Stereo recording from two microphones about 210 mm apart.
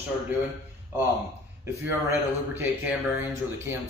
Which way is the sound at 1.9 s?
10° right (ahead or behind).